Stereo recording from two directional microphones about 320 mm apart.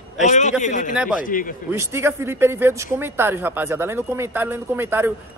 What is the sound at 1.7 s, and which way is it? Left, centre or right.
Speech, centre.